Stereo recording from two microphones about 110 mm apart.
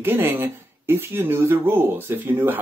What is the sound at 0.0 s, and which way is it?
Speech, 20° right (ahead or behind).